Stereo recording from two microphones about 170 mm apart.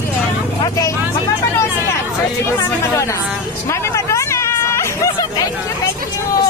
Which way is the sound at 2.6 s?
15° left (ahead or behind).